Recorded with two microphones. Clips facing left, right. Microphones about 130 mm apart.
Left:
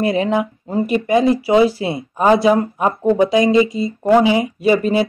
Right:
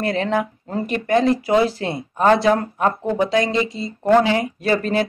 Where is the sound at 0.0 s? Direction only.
10° left (ahead or behind).